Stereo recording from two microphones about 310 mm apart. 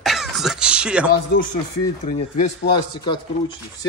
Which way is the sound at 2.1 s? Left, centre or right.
Centre.